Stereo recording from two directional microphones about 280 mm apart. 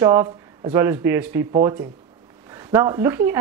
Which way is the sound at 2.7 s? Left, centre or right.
Centre.